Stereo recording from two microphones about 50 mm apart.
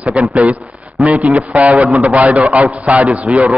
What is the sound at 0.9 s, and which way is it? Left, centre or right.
Speech, centre.